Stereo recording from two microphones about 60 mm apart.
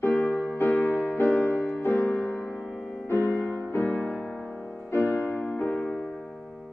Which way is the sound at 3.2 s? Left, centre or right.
Left.